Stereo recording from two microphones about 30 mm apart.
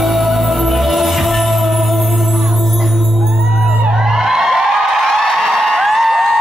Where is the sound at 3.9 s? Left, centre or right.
Centre.